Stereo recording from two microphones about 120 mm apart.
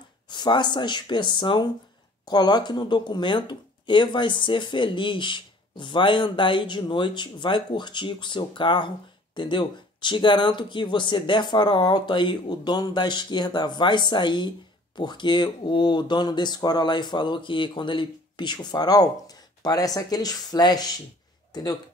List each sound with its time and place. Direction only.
0.3 s speech: 40° left (ahead or behind)